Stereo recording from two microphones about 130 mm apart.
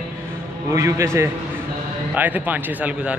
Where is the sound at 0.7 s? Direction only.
20° right (ahead or behind).